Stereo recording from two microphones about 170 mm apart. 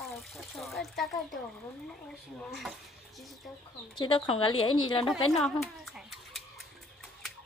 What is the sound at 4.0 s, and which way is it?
A woman's voice, 30° left (ahead or behind).